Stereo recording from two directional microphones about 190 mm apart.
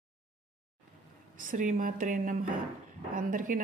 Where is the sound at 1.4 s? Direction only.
45° right (ahead or behind).